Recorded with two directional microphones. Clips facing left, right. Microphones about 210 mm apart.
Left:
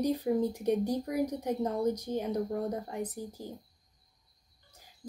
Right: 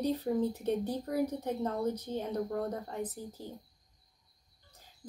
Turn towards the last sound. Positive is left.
turn(degrees=10)  # may be behind; listen again after turning